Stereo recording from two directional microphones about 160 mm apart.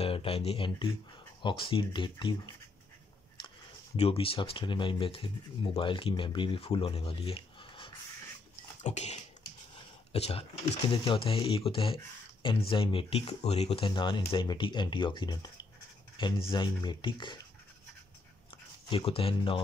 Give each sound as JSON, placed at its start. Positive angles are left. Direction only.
{"t": 0.0, "sound": "speech", "side_deg": 35}
{"t": 8.8, "sound": "a sound", "side_deg": 45}
{"t": 10.1, "sound": "speech", "side_deg": 40}
{"t": 18.9, "sound": "speech", "side_deg": 35}